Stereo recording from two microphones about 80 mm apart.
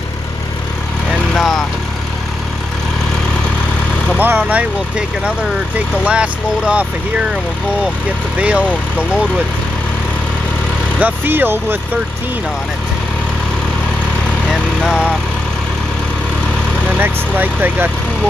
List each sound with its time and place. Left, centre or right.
1.4 s vehicle: centre
4.2 s speech: right
8.4 s speech: centre
11.0 s speech: right
14.5 s vehicle: centre
17.0 s speech: right